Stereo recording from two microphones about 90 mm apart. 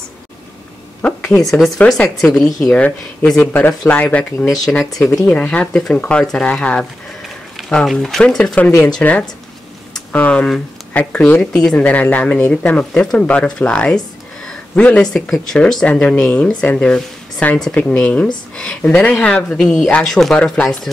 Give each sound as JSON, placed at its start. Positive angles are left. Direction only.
{"t": 1.9, "sound": "speech", "side_deg": 5}
{"t": 5.0, "sound": "speech", "side_deg": 30}
{"t": 5.3, "sound": "speech", "side_deg": 15}
{"t": 15.1, "sound": "speech", "side_deg": 5}